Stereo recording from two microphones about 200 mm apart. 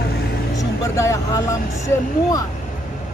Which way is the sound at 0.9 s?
15° left (ahead or behind).